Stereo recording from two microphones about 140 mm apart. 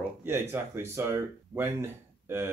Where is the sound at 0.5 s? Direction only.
20° right (ahead or behind).